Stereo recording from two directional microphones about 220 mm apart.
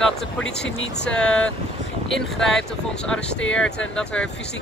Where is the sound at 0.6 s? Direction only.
50° left (ahead or behind).